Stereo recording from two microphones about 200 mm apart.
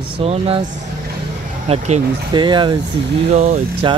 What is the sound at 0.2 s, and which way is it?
Speech, 30° right (ahead or behind).